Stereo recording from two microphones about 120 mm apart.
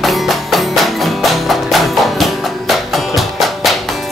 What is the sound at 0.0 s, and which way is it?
Music, centre (ahead or behind).